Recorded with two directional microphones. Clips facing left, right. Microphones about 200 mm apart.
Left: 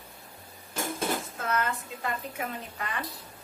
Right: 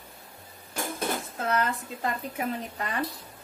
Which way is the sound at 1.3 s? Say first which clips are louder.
Right 3 dB; 35° right (ahead or behind).